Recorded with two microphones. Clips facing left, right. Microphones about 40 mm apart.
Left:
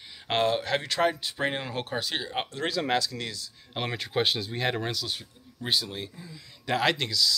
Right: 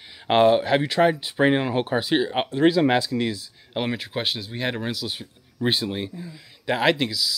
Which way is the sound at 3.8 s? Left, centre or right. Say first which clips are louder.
Left 2 dB; centre.